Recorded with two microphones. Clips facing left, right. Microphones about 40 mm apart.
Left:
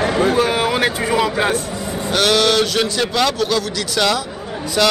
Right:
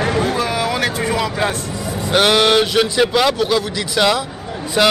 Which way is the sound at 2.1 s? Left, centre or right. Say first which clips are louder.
Right 2 dB; centre.